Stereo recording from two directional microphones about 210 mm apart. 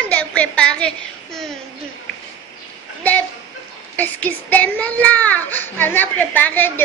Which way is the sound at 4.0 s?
5° left (ahead or behind).